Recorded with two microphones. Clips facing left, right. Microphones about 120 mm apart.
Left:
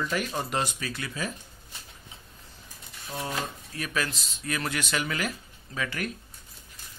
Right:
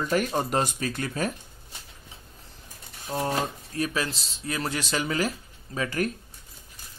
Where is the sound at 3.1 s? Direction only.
35° right (ahead or behind).